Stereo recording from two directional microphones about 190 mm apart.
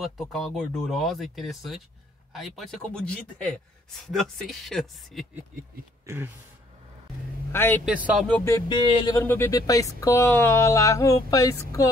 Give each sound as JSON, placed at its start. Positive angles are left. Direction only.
{"t": 0.0, "sound": "a man's voice", "side_deg": 0}
{"t": 6.0, "sound": "speech", "side_deg": -10}
{"t": 7.5, "sound": "speech", "side_deg": 10}
{"t": 7.8, "sound": "a man's voice", "side_deg": -5}
{"t": 8.3, "sound": "speech", "side_deg": 10}